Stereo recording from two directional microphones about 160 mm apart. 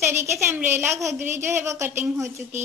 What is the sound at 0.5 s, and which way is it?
A woman's voice, 15° right (ahead or behind).